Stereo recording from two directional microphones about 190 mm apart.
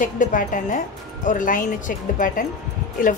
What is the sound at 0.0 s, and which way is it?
A woman's voice, 45° left (ahead or behind).